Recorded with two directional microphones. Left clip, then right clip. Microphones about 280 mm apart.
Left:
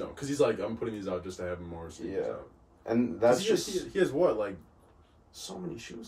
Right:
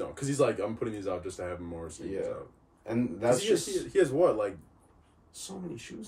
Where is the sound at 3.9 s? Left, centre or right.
Centre.